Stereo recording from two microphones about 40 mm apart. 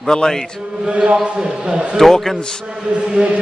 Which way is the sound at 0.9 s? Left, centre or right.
Right.